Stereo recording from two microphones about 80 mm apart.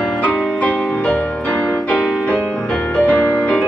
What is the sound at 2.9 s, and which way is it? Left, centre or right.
Music, centre.